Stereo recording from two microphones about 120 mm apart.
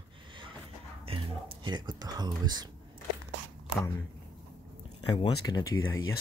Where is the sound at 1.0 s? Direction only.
50° right (ahead or behind); by 2.7 s 35° right (ahead or behind).